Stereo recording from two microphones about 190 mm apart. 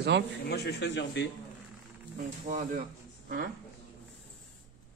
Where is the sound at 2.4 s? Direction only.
40° right (ahead or behind).